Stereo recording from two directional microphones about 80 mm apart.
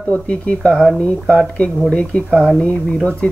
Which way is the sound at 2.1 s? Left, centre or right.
Centre.